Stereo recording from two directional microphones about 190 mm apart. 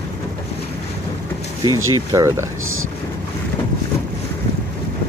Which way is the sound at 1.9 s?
15° right (ahead or behind).